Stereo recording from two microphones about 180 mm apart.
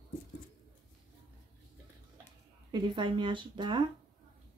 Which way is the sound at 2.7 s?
25° right (ahead or behind).